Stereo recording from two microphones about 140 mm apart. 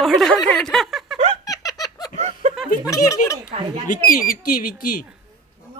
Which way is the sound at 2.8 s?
25° left (ahead or behind).